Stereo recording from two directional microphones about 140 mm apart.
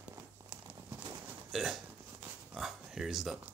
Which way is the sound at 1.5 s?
Centre (ahead or behind).